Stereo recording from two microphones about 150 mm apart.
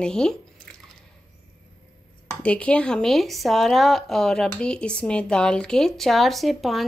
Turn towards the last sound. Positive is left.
turn(degrees=0)  # may be behind; listen again after turning